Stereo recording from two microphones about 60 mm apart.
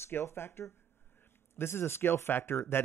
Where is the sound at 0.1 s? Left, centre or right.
Left.